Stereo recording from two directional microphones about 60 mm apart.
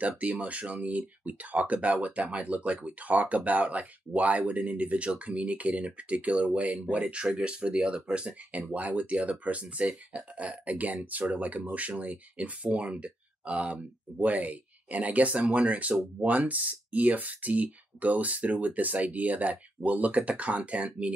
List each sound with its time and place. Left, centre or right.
0.0 s speech: right